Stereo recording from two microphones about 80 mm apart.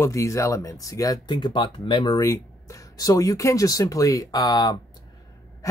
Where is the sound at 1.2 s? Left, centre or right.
Left.